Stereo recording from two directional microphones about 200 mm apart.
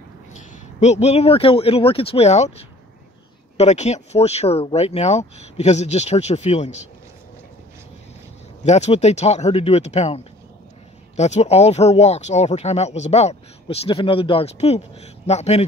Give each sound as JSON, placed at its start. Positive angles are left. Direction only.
{"t": 0.4, "sound": "speech", "side_deg": 35}
{"t": 8.6, "sound": "speech", "side_deg": 35}